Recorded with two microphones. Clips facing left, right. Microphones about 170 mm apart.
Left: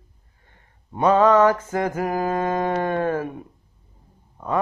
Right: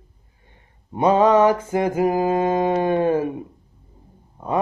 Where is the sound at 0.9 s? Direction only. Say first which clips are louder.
Right 1 dB; 15° right (ahead or behind).